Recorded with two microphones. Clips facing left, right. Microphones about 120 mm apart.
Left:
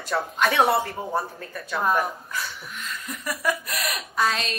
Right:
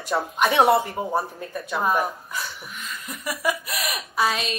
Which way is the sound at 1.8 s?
5° right (ahead or behind).